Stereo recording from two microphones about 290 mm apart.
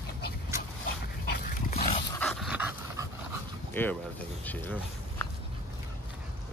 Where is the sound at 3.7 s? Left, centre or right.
Centre.